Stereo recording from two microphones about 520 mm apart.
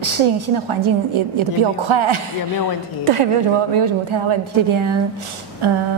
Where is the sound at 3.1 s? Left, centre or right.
Right.